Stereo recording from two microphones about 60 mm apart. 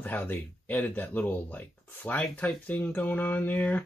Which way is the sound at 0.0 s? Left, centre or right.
Left.